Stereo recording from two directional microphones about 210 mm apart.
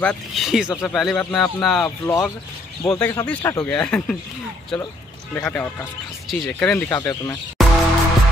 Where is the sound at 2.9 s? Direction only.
15° left (ahead or behind).